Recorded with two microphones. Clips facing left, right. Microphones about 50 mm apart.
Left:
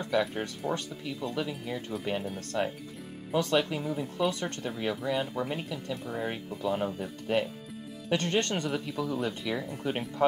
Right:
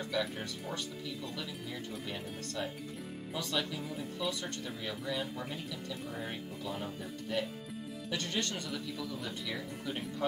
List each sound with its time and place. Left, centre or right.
0.0 s speech: left
8.9 s speech: left